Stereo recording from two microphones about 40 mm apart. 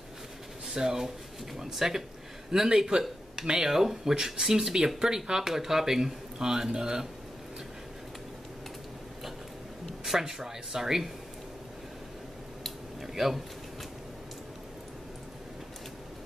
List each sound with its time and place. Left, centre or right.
0.7 s speech: centre
3.7 s speech: centre
10.0 s speech: centre
12.6 s a sound: centre